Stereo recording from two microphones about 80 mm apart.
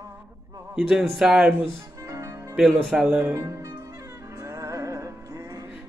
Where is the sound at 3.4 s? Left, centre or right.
Right.